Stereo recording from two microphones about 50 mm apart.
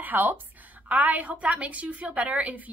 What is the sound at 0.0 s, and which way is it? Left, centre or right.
A woman's voice, right.